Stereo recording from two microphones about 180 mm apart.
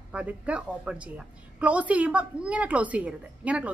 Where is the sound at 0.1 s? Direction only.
5° right (ahead or behind).